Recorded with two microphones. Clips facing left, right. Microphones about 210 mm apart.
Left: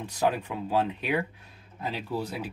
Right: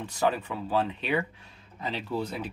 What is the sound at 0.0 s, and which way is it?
Speech, 10° left (ahead or behind).